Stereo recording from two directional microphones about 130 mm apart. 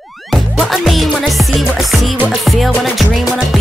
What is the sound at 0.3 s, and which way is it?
Music, centre (ahead or behind).